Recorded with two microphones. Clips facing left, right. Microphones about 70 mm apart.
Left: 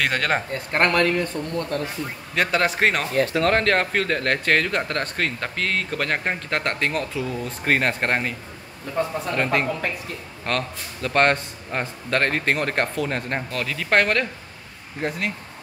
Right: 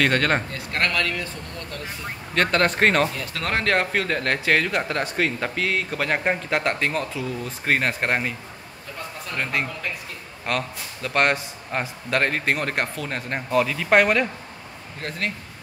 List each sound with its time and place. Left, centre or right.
0.0 s speech: centre
0.5 s speech: left
2.3 s speech: centre
9.0 s speech: left
9.3 s speech: centre
15.0 s speech: centre